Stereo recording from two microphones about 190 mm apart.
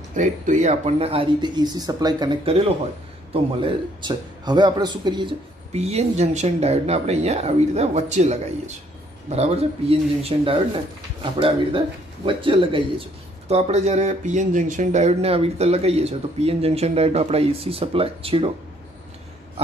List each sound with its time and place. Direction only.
0.1 s speech: 40° right (ahead or behind)
12.3 s speech: 25° right (ahead or behind)